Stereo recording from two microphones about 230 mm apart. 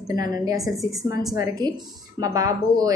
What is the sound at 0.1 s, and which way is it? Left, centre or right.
A woman's voice, centre.